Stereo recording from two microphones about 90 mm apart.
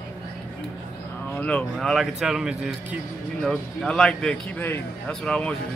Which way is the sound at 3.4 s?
5° left (ahead or behind).